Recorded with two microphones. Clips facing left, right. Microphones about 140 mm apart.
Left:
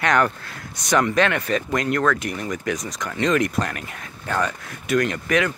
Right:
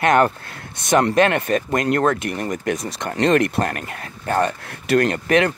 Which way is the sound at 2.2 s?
50° right (ahead or behind).